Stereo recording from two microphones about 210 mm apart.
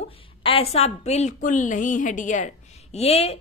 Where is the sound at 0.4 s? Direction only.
25° left (ahead or behind).